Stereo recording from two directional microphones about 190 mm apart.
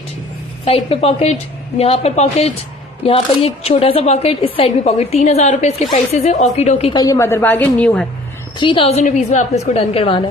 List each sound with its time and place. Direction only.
0.7 s a woman's voice: 30° left (ahead or behind)
6.9 s a woman's voice: 20° left (ahead or behind)
8.5 s a woman's voice: 25° left (ahead or behind)